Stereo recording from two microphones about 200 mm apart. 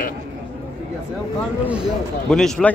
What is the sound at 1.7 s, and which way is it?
A man's voice, centre (ahead or behind).